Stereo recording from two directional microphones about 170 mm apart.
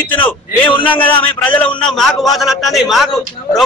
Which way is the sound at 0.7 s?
30° left (ahead or behind).